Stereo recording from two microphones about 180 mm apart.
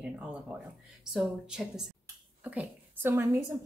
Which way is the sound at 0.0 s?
5° right (ahead or behind).